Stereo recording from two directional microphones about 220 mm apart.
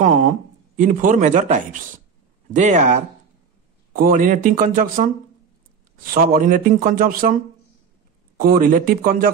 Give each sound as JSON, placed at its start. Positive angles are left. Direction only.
{"t": 0.0, "sound": "speech", "side_deg": -35}
{"t": 6.1, "sound": "speech", "side_deg": -40}
{"t": 8.4, "sound": "speech", "side_deg": -40}